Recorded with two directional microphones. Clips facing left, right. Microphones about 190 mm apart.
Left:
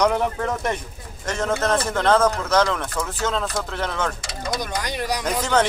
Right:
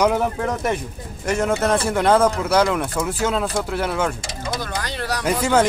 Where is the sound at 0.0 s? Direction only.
5° right (ahead or behind).